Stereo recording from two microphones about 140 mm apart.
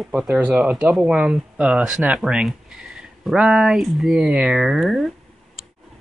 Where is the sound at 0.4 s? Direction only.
15° right (ahead or behind).